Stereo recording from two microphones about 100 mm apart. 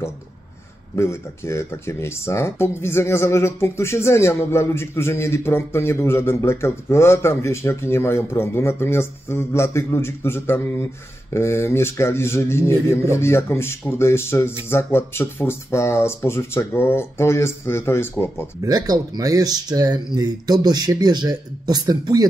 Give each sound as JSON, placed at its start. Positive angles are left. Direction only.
{"t": 0.9, "sound": "speech", "side_deg": 30}
{"t": 18.6, "sound": "speech", "side_deg": -40}